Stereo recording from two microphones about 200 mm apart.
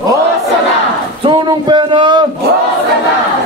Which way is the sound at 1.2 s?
25° right (ahead or behind).